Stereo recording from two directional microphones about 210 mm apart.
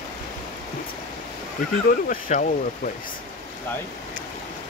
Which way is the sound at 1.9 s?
40° left (ahead or behind).